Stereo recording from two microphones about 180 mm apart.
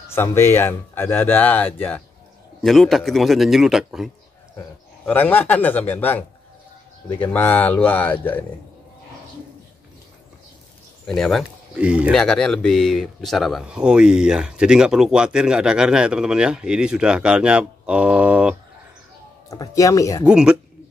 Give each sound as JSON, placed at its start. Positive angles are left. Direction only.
{"t": 0.1, "sound": "speech", "side_deg": 15}
{"t": 4.6, "sound": "speech", "side_deg": 10}
{"t": 11.1, "sound": "speech", "side_deg": 0}
{"t": 19.5, "sound": "speech", "side_deg": 20}
{"t": 20.2, "sound": "speech", "side_deg": -5}